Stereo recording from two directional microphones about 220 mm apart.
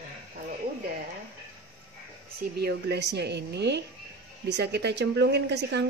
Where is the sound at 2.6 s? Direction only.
50° right (ahead or behind).